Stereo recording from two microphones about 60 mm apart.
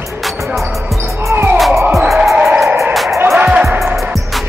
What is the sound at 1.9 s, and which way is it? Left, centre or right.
Music, centre.